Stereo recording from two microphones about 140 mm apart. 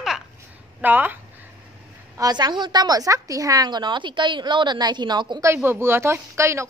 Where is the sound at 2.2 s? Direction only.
30° right (ahead or behind).